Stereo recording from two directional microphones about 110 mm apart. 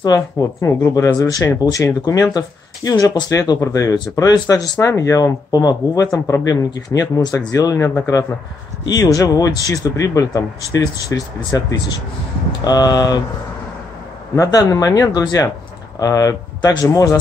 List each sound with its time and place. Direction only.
0.0 s speech: 35° left (ahead or behind)
14.3 s speech: 30° left (ahead or behind)